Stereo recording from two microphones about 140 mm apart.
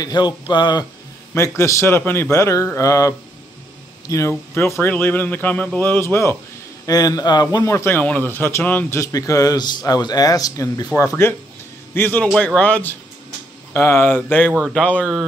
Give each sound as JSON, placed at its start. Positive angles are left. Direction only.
{"t": 0.0, "sound": "speech", "side_deg": 30}
{"t": 1.3, "sound": "speech", "side_deg": 20}
{"t": 11.9, "sound": "speech", "side_deg": 15}
{"t": 14.6, "sound": "a man's voice", "side_deg": 0}